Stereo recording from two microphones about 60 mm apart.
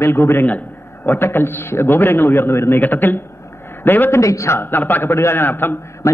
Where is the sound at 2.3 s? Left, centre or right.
Left.